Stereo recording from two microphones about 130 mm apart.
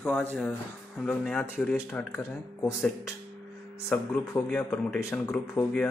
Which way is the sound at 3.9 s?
20° left (ahead or behind).